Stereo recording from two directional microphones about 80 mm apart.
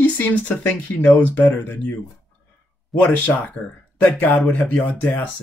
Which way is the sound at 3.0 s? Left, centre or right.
Left.